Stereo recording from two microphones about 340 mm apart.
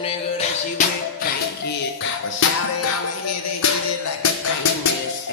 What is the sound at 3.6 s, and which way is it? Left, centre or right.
Music, left.